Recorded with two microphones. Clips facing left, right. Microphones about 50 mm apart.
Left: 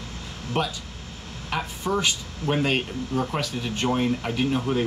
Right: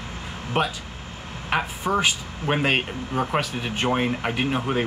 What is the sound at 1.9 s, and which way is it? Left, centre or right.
Speech, right.